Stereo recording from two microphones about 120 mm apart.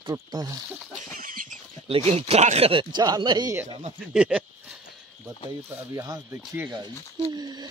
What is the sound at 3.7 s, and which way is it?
Speech, 55° right (ahead or behind).